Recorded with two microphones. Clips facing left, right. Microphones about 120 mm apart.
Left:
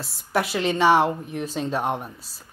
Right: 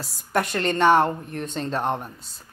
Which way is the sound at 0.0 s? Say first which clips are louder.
Even; centre (ahead or behind).